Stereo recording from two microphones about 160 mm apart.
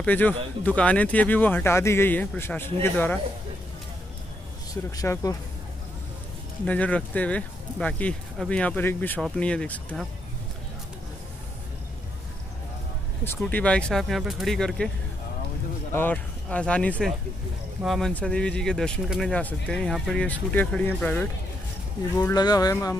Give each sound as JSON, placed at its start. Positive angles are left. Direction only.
{"t": 0.0, "sound": "speech", "side_deg": 10}
{"t": 4.9, "sound": "speech", "side_deg": 20}
{"t": 6.6, "sound": "speech", "side_deg": 10}
{"t": 13.4, "sound": "speech", "side_deg": 10}
{"t": 15.9, "sound": "speech", "side_deg": 10}
{"t": 22.3, "sound": "speech", "side_deg": 25}